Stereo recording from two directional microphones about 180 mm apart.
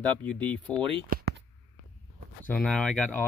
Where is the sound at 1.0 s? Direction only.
55° right (ahead or behind).